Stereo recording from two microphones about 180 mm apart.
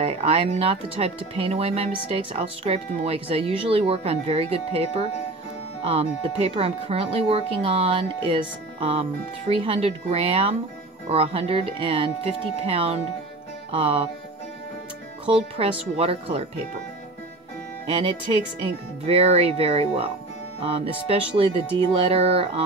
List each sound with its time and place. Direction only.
0.0 s speech: 35° right (ahead or behind)
5.9 s speech: 30° right (ahead or behind)
13.7 s music: 30° right (ahead or behind)
15.2 s speech: 30° right (ahead or behind)
19.0 s speech: 35° right (ahead or behind)